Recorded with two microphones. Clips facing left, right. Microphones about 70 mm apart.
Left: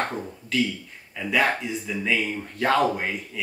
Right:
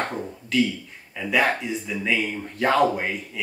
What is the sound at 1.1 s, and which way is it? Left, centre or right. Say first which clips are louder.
Speech: right 1 dB; centre.